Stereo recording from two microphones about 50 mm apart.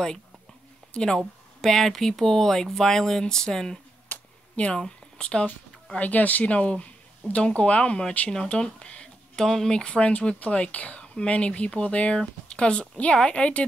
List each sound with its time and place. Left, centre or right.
0.9 s speech: centre
4.1 s a sound: left
4.7 s speech: centre
5.9 s speech: left
8.3 s speech: centre
9.4 s speech: centre